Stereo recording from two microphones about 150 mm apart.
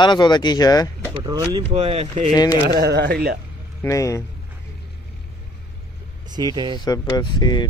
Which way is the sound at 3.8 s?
20° left (ahead or behind).